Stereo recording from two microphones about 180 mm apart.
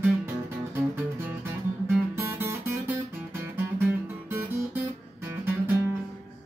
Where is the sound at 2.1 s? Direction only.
15° right (ahead or behind).